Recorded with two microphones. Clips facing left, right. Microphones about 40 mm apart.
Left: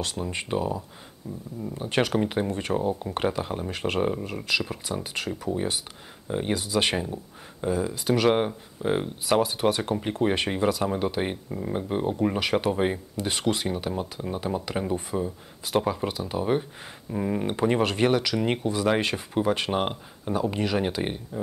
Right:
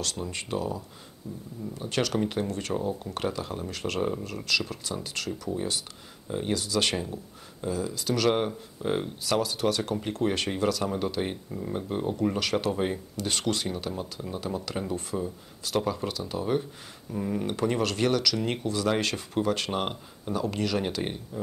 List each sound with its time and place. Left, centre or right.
0.0 s speech: left
9.2 s speech: left